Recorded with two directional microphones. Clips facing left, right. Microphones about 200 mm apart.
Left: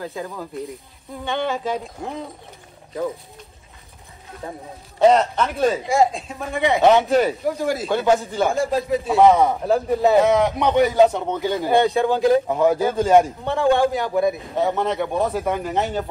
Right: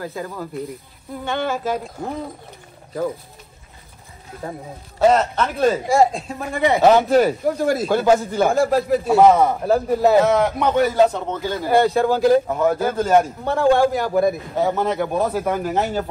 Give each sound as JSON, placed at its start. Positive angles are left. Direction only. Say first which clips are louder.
{"t": 0.0, "sound": "a man's voice", "louder": "right 1 dB", "side_deg": 0}
{"t": 5.0, "sound": "a man's voice", "louder": "left 1 dB", "side_deg": 0}
{"t": 11.1, "sound": "speech", "louder": "left 2 dB", "side_deg": 15}
{"t": 11.6, "sound": "a man's voice", "louder": "right 2 dB", "side_deg": 0}
{"t": 12.4, "sound": "speech", "louder": "left 1 dB", "side_deg": 15}
{"t": 13.2, "sound": "a man's voice", "louder": "right 1 dB", "side_deg": 0}